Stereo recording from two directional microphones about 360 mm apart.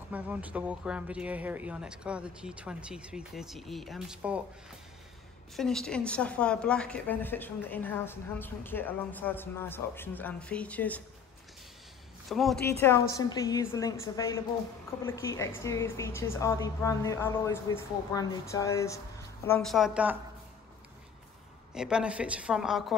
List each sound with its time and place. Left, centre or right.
0.1 s a woman's voice: centre
5.6 s a woman's voice: centre
12.3 s a woman's voice: centre
21.7 s a woman's voice: centre